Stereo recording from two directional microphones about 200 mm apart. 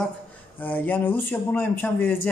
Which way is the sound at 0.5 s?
10° left (ahead or behind).